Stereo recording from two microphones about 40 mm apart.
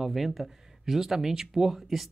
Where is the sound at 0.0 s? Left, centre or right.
Centre.